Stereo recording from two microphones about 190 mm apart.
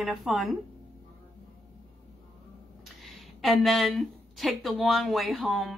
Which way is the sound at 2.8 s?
Centre (ahead or behind).